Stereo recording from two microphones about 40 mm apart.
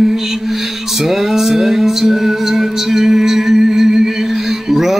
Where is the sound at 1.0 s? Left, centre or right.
Centre.